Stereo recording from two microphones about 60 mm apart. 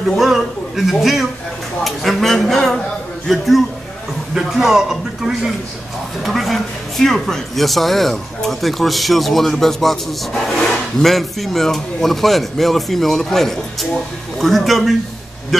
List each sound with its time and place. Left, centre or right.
0.1 s a man's voice: centre